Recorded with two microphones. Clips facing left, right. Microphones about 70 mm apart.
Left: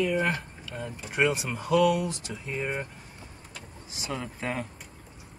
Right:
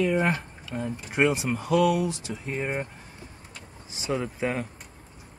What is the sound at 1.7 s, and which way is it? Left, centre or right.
Speech, centre.